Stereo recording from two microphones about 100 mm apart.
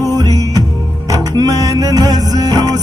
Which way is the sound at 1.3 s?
35° right (ahead or behind).